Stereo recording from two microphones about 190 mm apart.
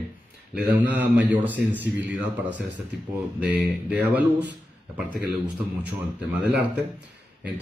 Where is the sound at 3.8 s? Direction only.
10° right (ahead or behind).